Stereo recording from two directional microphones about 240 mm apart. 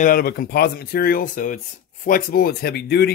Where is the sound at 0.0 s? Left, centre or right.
Left.